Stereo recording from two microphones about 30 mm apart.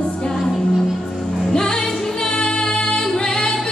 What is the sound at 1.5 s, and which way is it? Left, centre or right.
Music, left.